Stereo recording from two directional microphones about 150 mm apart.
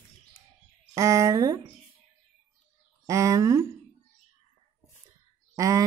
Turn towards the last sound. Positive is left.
turn(degrees=-20)  # may be behind; listen again after turning